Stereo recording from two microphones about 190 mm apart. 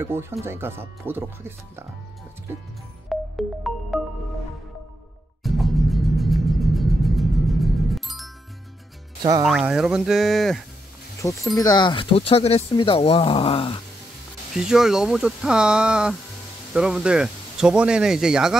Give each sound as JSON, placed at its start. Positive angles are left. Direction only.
{"t": 0.0, "sound": "speech", "side_deg": -15}
{"t": 3.1, "sound": "music", "side_deg": 0}
{"t": 5.4, "sound": "music", "side_deg": 0}
{"t": 9.4, "sound": "speech", "side_deg": 0}
{"t": 11.5, "sound": "speech", "side_deg": 20}
{"t": 14.5, "sound": "speech", "side_deg": 0}